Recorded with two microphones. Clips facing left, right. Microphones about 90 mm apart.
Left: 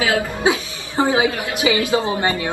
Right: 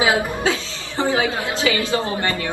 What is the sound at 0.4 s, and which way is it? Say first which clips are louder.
A woman's voice: left 3 dB; 15° left (ahead or behind).